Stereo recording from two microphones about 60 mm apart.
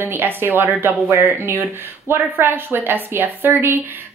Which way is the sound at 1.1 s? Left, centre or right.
Right.